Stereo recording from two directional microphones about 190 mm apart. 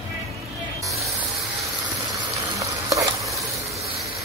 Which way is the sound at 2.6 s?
15° right (ahead or behind).